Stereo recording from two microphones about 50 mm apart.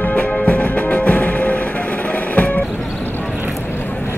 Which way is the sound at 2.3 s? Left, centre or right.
Left.